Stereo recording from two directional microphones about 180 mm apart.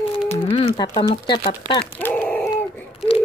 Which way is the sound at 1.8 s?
10° left (ahead or behind).